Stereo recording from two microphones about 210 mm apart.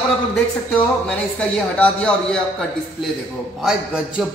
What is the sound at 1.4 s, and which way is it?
A man's voice, 5° left (ahead or behind).